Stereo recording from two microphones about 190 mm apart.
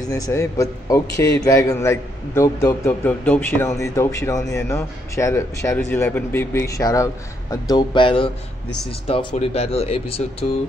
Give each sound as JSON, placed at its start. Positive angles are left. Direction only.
{"t": 0.0, "sound": "a man's voice", "side_deg": 15}